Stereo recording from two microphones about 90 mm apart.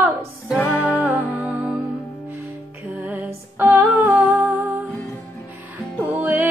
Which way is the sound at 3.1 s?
20° right (ahead or behind).